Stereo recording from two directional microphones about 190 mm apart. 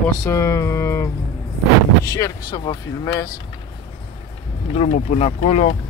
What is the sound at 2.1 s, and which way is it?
Speech, 20° left (ahead or behind).